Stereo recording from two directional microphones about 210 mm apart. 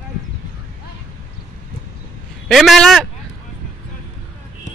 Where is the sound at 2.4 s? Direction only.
Centre (ahead or behind).